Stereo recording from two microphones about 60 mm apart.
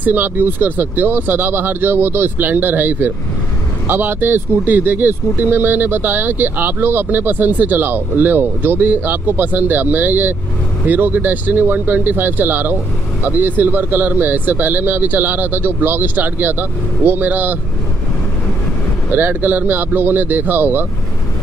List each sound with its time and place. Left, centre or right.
0.0 s speech: right
19.1 s speech: right